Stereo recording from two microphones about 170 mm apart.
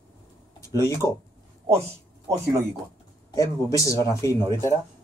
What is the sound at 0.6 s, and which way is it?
Speech, 15° left (ahead or behind).